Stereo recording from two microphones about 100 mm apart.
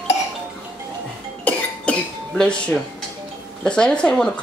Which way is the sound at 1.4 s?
10° left (ahead or behind).